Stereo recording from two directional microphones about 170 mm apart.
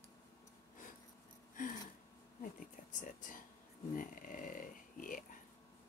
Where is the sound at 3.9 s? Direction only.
50° left (ahead or behind).